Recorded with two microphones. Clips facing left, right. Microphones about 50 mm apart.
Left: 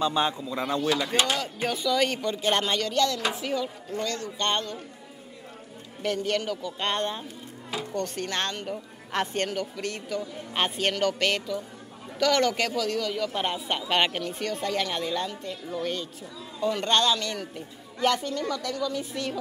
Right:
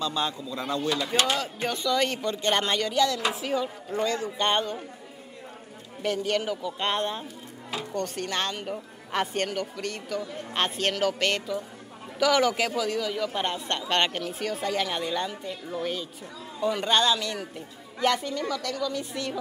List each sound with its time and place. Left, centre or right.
0.0 s speech: left
0.8 s mechanisms: centre
1.2 s a man's voice: centre
3.5 s speech: centre
6.0 s a man's voice: centre